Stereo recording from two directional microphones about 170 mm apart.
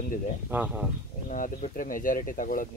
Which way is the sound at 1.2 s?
50° left (ahead or behind).